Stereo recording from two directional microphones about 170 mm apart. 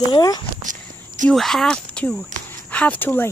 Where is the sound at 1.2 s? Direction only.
Centre (ahead or behind).